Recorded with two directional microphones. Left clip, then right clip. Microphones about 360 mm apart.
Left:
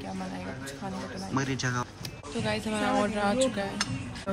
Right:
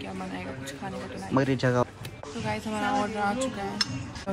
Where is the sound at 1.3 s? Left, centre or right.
Centre.